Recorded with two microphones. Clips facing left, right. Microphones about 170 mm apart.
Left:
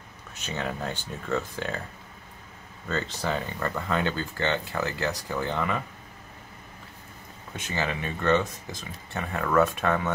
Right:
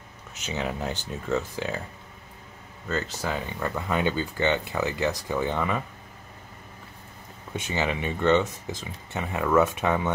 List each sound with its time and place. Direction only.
0.3 s speech: 15° right (ahead or behind)
2.9 s speech: 5° right (ahead or behind)
7.7 s speech: 20° right (ahead or behind)